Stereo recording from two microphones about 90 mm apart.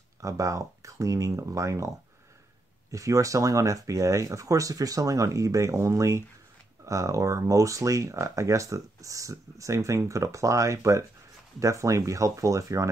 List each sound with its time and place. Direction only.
0.2 s speech: 35° right (ahead or behind)
2.9 s speech: 40° right (ahead or behind)